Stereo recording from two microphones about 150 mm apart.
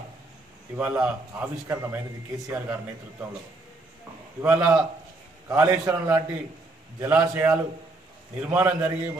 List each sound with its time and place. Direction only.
0.7 s a man's voice: 10° right (ahead or behind)
4.4 s a man's voice: 10° right (ahead or behind)